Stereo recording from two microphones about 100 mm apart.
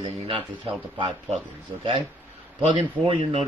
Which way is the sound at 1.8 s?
60° right (ahead or behind).